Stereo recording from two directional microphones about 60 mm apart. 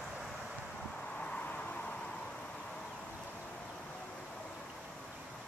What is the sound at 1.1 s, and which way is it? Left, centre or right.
Vehicle, left.